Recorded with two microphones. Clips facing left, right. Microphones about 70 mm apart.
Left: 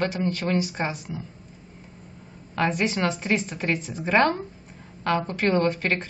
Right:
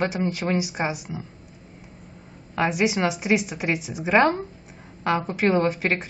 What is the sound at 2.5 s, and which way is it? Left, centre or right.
A woman's voice, centre.